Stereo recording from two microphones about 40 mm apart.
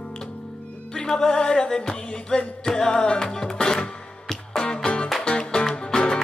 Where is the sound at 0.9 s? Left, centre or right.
Centre.